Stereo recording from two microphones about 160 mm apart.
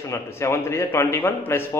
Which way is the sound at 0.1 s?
15° left (ahead or behind).